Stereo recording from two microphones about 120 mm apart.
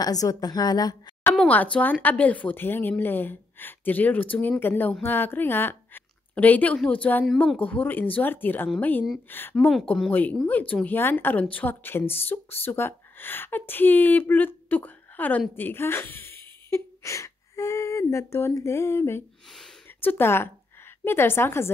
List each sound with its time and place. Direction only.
0.0 s a woman's voice: 30° left (ahead or behind)
1.3 s a woman's voice: 10° left (ahead or behind)